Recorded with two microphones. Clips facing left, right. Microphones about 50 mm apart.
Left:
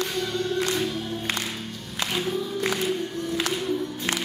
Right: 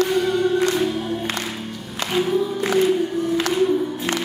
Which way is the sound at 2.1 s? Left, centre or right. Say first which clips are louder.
Right 8 dB; centre.